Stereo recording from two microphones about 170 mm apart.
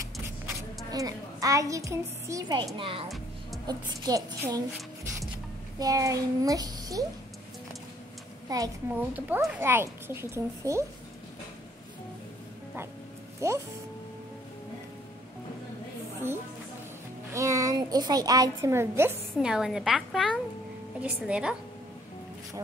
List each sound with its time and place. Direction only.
0.9 s a woman's voice: 20° right (ahead or behind)
3.6 s a woman's voice: 20° right (ahead or behind)
5.8 s a woman's voice: 20° right (ahead or behind)
8.5 s a child's voice: 15° right (ahead or behind)
13.4 s a child's voice: 15° right (ahead or behind)
17.3 s a woman's voice: 20° right (ahead or behind)
19.3 s a woman's voice: 5° right (ahead or behind)